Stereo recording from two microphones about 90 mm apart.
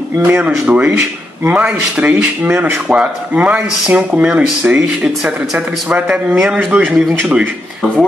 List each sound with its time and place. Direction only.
0.2 s speech: 20° right (ahead or behind)